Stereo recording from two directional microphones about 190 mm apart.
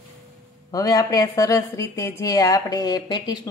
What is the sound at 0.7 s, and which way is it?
A woman's voice, 20° left (ahead or behind).